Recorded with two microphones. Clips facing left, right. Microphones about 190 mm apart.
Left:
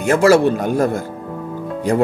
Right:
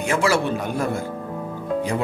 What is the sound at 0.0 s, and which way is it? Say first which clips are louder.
A man's voice: left 8 dB; 40° left (ahead or behind).